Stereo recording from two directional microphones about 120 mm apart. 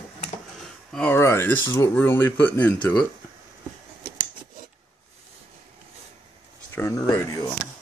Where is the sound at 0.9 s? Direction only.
10° left (ahead or behind).